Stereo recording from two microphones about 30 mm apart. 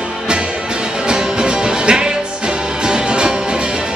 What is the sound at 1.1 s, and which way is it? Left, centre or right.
Music, right.